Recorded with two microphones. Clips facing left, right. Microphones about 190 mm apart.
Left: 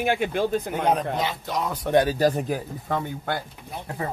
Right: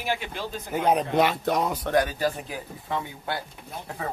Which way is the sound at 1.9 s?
25° left (ahead or behind).